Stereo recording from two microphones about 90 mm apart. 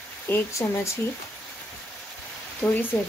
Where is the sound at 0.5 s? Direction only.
35° left (ahead or behind).